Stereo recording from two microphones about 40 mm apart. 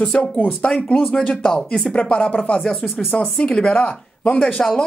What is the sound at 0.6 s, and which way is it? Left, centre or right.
Speech, left.